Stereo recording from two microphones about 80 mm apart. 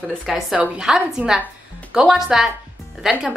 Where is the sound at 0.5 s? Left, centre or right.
Centre.